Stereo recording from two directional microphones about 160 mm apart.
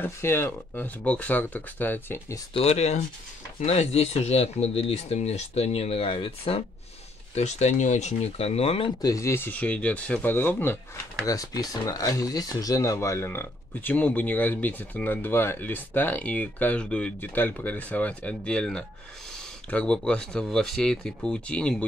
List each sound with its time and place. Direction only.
0.0 s speech: 15° left (ahead or behind)
2.5 s speech: 40° left (ahead or behind)
9.0 s speech: 20° left (ahead or behind)